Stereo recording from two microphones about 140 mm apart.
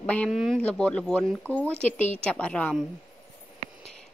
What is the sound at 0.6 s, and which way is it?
Speech, 10° left (ahead or behind).